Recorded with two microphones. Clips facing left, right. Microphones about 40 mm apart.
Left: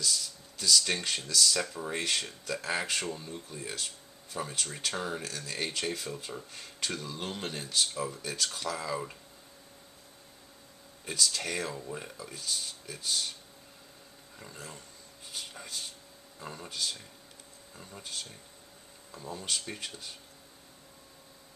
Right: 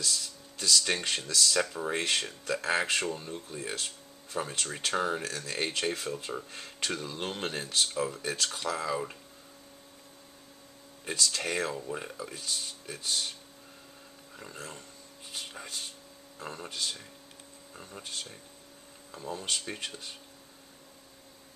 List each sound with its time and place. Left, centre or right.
0.0 s speech: centre
11.1 s speech: centre
14.4 s speech: centre
16.3 s speech: centre
16.6 s speech: centre